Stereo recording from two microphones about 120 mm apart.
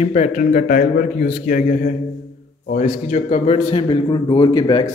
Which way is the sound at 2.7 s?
65° left (ahead or behind).